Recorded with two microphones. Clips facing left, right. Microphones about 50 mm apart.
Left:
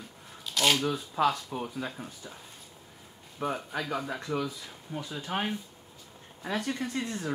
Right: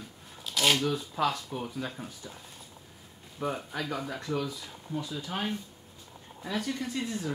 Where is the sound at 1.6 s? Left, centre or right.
Centre.